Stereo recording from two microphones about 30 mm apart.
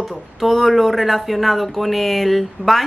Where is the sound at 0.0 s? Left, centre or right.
Centre.